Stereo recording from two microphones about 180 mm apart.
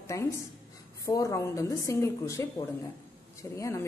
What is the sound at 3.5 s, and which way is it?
Speech, 15° left (ahead or behind).